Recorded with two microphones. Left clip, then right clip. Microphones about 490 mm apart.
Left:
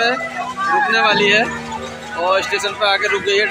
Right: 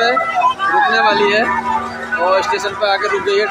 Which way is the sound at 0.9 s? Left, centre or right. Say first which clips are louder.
Right 1 dB; left.